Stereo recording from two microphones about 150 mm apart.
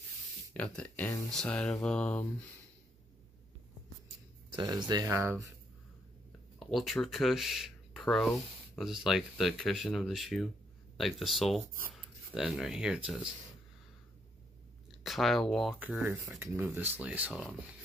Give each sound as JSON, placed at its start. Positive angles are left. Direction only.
{"t": 0.5, "sound": "speech", "side_deg": 10}
{"t": 4.6, "sound": "speech", "side_deg": -30}
{"t": 6.6, "sound": "speech", "side_deg": 0}
{"t": 14.9, "sound": "speech", "side_deg": 0}
{"t": 16.3, "sound": "speech", "side_deg": -15}